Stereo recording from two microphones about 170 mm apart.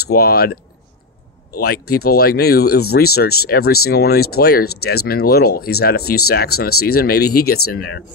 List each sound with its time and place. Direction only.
0.1 s speech: 65° left (ahead or behind)